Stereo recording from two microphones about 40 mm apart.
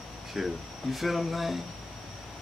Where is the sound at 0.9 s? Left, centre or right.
Centre.